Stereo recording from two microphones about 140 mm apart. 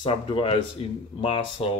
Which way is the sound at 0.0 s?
40° left (ahead or behind).